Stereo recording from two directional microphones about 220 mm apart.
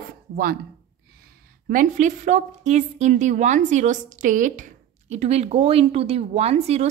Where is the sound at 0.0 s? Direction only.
45° right (ahead or behind).